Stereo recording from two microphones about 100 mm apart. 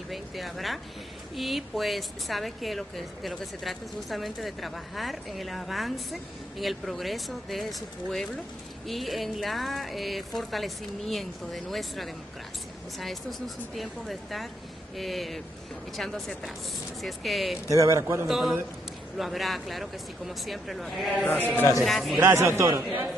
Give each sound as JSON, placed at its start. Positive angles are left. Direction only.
{"t": 0.1, "sound": "speech", "side_deg": 0}
{"t": 17.6, "sound": "a man's voice", "side_deg": -30}
{"t": 18.2, "sound": "speech", "side_deg": 0}
{"t": 21.1, "sound": "a man's voice", "side_deg": 15}
{"t": 21.8, "sound": "speech", "side_deg": 0}
{"t": 22.2, "sound": "a man's voice", "side_deg": -25}